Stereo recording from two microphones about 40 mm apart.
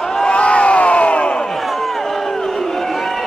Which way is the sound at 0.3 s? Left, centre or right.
Left.